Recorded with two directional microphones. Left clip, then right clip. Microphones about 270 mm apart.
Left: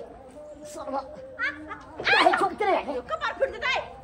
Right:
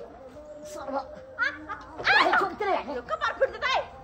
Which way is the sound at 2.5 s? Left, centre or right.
Left.